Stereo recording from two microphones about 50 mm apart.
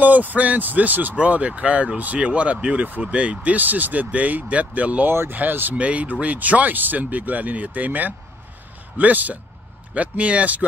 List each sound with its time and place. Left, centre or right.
0.0 s speech: right
5.0 s speech: right
5.3 s speech: right
5.8 s speech: right